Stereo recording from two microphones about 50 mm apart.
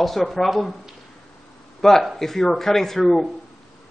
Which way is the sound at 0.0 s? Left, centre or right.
Centre.